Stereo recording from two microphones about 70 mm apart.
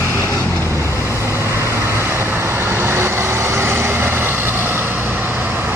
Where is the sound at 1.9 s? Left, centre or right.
Right.